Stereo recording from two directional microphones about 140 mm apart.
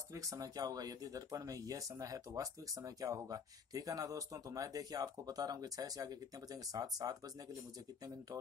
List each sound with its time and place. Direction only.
0.1 s speech: 25° right (ahead or behind)